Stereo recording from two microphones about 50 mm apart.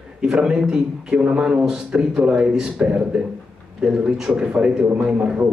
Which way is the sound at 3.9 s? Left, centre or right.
Centre.